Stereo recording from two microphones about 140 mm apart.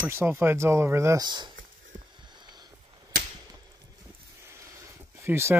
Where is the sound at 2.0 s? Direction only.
35° right (ahead or behind).